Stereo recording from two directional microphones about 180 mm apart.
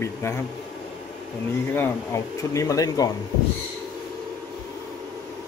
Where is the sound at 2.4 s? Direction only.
20° left (ahead or behind).